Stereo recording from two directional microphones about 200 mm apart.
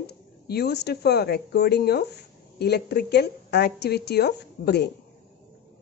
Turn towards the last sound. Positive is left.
turn(degrees=55)  # may be behind; listen again after turning